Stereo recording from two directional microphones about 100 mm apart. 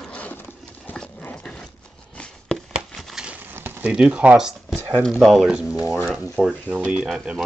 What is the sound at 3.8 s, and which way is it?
Speech, 10° right (ahead or behind).